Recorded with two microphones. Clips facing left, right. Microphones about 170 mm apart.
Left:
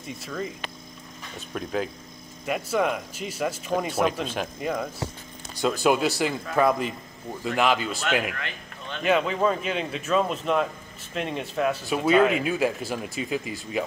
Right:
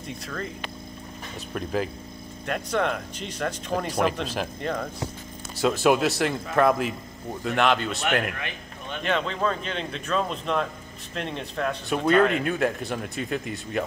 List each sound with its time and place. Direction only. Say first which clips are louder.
0.0 s speech: left 1 dB; 5° left (ahead or behind)
1.5 s speech: right 1 dB; centre (ahead or behind)
8.4 s speech: right 1 dB; 15° right (ahead or behind)
9.0 s speech: left 4 dB; 5° left (ahead or behind)